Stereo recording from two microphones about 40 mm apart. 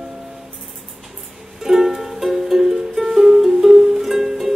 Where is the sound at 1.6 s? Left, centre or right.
Centre.